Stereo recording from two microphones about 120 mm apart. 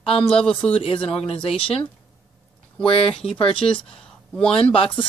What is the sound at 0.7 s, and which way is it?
Speech, 50° left (ahead or behind).